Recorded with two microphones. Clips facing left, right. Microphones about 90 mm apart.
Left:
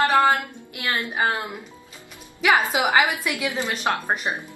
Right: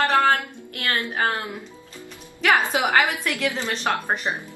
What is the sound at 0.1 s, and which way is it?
Music, 15° left (ahead or behind).